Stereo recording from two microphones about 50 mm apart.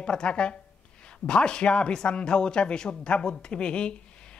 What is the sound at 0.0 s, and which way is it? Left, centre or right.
Speech, centre.